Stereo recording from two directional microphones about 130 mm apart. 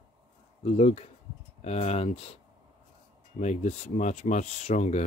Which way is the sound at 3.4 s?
60° left (ahead or behind).